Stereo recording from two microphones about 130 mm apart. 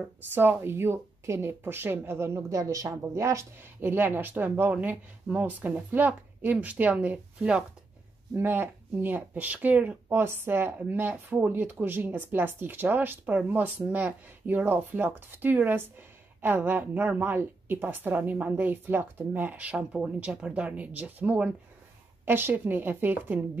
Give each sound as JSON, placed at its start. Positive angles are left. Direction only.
{"t": 0.3, "sound": "speech", "side_deg": -15}